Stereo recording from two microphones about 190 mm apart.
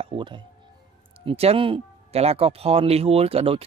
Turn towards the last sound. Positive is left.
turn(degrees=-30)  # may be behind; listen again after turning